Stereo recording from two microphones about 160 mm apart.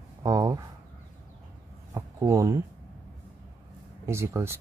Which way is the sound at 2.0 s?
20° right (ahead or behind).